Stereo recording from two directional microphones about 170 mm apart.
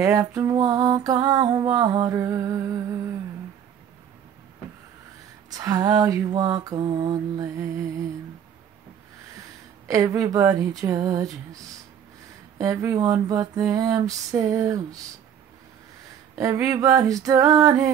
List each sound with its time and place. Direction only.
0.0 s music: 20° right (ahead or behind)
5.5 s music: 20° right (ahead or behind)
9.8 s music: 20° right (ahead or behind)
12.5 s music: 20° right (ahead or behind)
16.3 s music: 20° right (ahead or behind)